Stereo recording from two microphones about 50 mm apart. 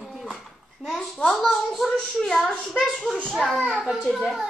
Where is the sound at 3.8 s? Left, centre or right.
Centre.